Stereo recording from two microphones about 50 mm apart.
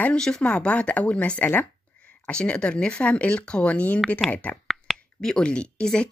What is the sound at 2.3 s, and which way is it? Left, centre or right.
A woman's voice, left.